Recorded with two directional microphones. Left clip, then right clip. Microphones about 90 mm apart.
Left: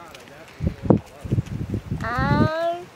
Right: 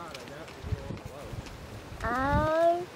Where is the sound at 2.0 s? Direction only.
40° left (ahead or behind).